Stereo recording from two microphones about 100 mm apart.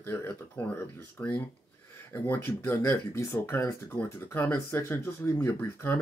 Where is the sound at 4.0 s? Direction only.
15° left (ahead or behind).